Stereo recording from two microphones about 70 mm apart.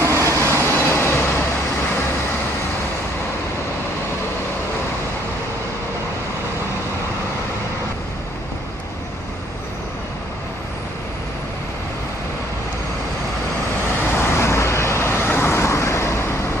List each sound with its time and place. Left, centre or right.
0.0 s vehicle: right
0.6 s vehicle: left
14.0 s vehicle: left